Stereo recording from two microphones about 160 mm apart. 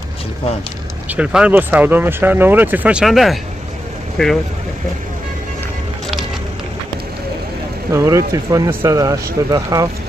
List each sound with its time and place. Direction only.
1.0 s speech: 10° right (ahead or behind)
7.9 s speech: 20° right (ahead or behind)